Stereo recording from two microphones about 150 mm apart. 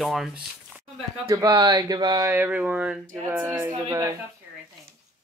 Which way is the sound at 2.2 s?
15° right (ahead or behind).